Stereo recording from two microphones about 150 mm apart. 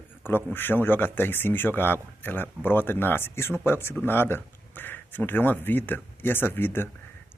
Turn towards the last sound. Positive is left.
turn(degrees=15)  # may be behind; listen again after turning